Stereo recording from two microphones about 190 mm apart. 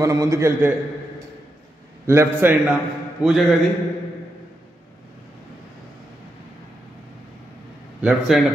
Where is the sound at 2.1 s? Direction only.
10° right (ahead or behind).